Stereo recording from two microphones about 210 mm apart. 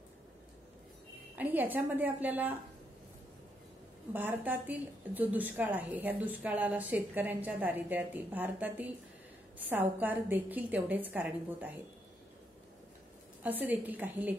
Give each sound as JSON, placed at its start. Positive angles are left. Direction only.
{"t": 1.3, "sound": "a woman's voice", "side_deg": -10}
{"t": 4.1, "sound": "a woman's voice", "side_deg": -10}
{"t": 13.4, "sound": "a woman's voice", "side_deg": -10}